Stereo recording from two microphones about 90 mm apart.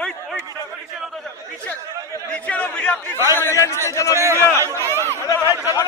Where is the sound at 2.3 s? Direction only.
15° left (ahead or behind).